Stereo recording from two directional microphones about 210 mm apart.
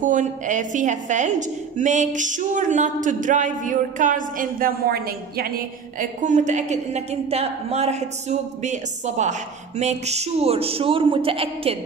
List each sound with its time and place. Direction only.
0.0 s a woman's voice: 35° right (ahead or behind)
5.9 s a woman's voice: 35° right (ahead or behind)